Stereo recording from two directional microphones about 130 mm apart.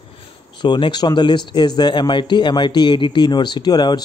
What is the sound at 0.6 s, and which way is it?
Speech, 35° left (ahead or behind).